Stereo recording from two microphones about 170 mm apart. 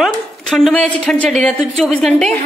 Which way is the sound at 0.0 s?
Centre (ahead or behind).